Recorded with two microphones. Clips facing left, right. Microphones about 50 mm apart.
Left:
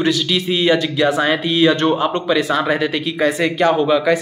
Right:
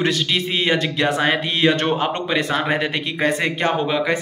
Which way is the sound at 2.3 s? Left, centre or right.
Right.